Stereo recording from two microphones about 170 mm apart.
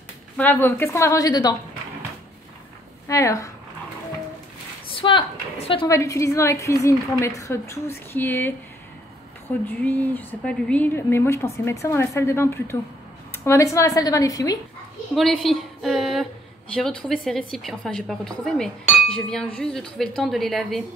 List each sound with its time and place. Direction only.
0.4 s speech: 10° left (ahead or behind)
3.1 s speech: 20° left (ahead or behind)
4.8 s a woman's voice: 30° left (ahead or behind)
5.9 s speech: 20° left (ahead or behind)
9.7 s speech: 10° left (ahead or behind)
15.1 s a woman's voice: centre (ahead or behind)